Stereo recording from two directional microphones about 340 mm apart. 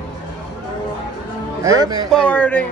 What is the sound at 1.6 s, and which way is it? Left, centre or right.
Speech, centre.